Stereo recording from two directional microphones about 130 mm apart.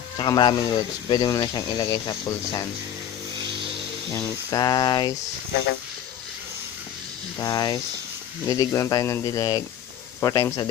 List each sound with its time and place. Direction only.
0.2 s speech: 35° left (ahead or behind)
4.5 s speech: 30° left (ahead or behind)
7.3 s speech: 25° left (ahead or behind)